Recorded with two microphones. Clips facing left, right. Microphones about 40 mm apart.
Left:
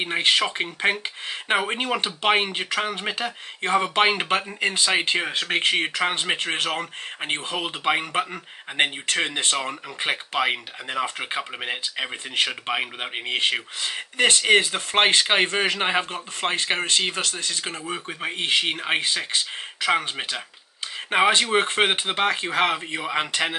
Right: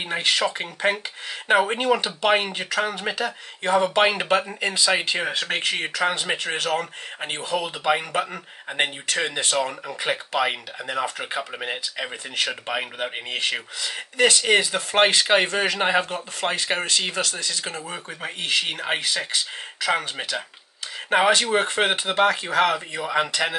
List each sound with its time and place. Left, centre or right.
0.0 s speech: left
1.7 s speech: left
12.7 s speech: centre
13.3 s speech: left
14.9 s speech: left